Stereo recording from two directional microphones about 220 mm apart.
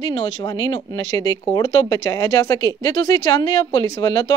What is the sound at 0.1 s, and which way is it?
A woman's voice, 20° left (ahead or behind).